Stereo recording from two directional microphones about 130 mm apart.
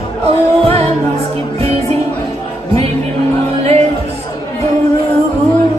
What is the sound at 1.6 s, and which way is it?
Music, 50° right (ahead or behind).